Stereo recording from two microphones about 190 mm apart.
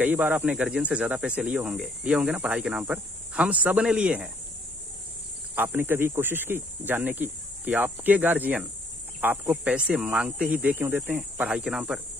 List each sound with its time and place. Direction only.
0.0 s speech: 10° right (ahead or behind)
5.6 s speech: 10° right (ahead or behind)